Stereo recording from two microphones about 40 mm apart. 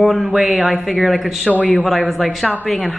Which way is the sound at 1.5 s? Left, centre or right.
Left.